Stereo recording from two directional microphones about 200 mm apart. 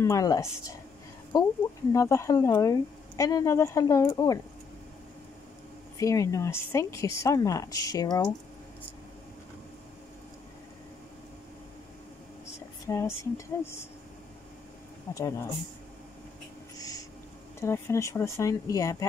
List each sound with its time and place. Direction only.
0.0 s a woman's voice: 15° left (ahead or behind)
5.9 s speech: 15° left (ahead or behind)
12.8 s speech: 15° left (ahead or behind)
15.1 s speech: 15° left (ahead or behind)
16.7 s a sound: 20° left (ahead or behind)
17.6 s speech: 15° left (ahead or behind)